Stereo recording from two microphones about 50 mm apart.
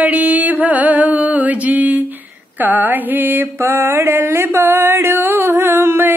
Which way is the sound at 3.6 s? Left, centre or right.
Right.